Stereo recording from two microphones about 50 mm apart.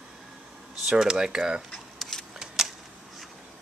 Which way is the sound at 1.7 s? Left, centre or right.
Centre.